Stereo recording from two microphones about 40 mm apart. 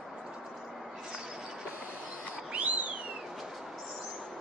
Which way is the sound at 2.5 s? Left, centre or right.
Right.